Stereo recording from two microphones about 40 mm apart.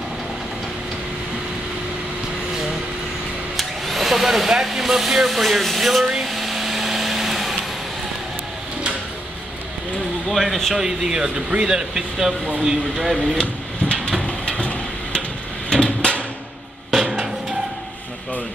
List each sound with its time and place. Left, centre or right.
3.5 s speech: centre
6.2 s vehicle: centre
10.3 s speech: centre
10.8 s speech: centre
14.2 s a sound: left
16.9 s music: centre